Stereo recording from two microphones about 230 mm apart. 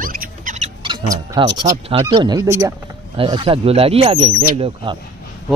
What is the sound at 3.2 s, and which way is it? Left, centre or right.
Speech, right.